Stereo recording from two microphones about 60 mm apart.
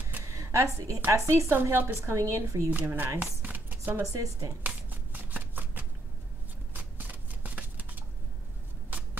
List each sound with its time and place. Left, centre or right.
0.3 s a sound: right
0.7 s a woman's voice: right
2.1 s speech: right
2.7 s speech: right
3.5 s a sound: right
4.0 s speech: right
4.6 s shuffling cards: right